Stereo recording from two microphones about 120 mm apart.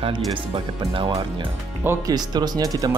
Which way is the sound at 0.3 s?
45° right (ahead or behind).